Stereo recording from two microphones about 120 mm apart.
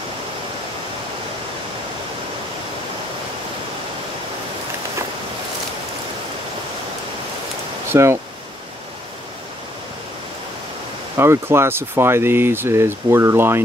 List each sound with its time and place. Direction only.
7.9 s speech: 20° right (ahead or behind)
11.1 s speech: 20° right (ahead or behind)